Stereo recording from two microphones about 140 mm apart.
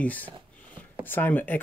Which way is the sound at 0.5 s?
10° left (ahead or behind).